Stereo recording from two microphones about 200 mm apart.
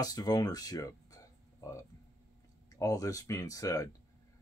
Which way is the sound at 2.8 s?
15° left (ahead or behind).